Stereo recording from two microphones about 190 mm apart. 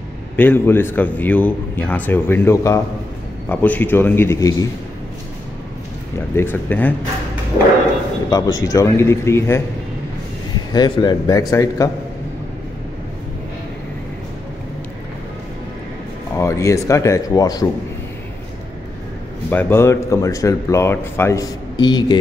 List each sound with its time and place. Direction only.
0.4 s speech: 10° left (ahead or behind)
6.3 s speech: 10° left (ahead or behind)
8.3 s speech: 20° left (ahead or behind)
10.7 s a man's voice: 20° left (ahead or behind)
16.3 s speech: 15° left (ahead or behind)
19.5 s speech: 15° left (ahead or behind)